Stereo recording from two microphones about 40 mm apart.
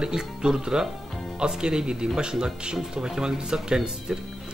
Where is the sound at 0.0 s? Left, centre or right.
Centre.